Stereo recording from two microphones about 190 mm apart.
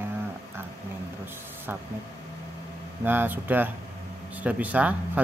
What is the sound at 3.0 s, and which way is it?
Speech, 10° right (ahead or behind).